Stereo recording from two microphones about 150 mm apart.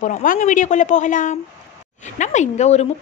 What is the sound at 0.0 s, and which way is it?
A woman's voice, 60° left (ahead or behind).